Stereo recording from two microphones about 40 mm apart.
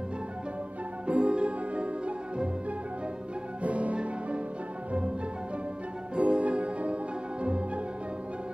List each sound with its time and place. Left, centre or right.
1.0 s music: right
3.6 s music: right
6.1 s music: right